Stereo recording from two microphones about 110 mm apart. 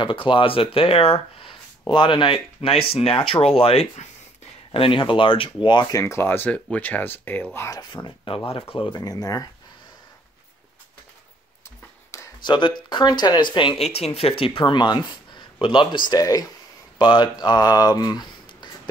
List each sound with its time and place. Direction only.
0.0 s speech: 50° left (ahead or behind); by 7.8 s 25° left (ahead or behind)
7.9 s speech: 45° left (ahead or behind)
8.5 s speech: 60° left (ahead or behind)
9.0 s speech: 35° left (ahead or behind)
12.1 s a sound: 30° left (ahead or behind)
12.4 s speech: 45° left (ahead or behind)
13.7 s speech: 65° left (ahead or behind); by 18.7 s 40° left (ahead or behind)